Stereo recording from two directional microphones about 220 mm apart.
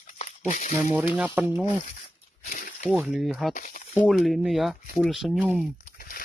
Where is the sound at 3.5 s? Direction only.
35° left (ahead or behind).